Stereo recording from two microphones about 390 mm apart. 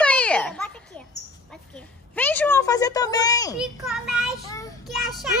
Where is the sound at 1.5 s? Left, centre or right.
Centre.